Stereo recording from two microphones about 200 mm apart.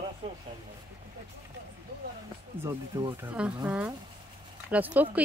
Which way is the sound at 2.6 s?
10° right (ahead or behind).